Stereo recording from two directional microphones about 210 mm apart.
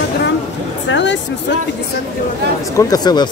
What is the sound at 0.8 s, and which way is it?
Speech, 60° left (ahead or behind).